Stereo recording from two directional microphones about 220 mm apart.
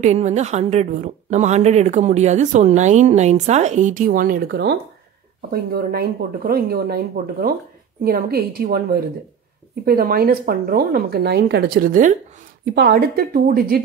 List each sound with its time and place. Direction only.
0.0 s a woman's voice: 30° right (ahead or behind)